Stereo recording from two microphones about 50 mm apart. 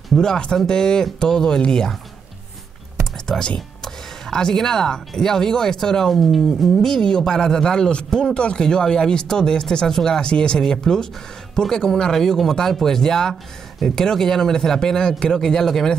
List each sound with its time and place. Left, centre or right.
0.2 s speech: centre
3.3 s speech: centre